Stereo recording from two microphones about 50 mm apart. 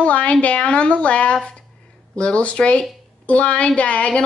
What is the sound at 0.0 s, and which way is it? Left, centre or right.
A woman's voice, left.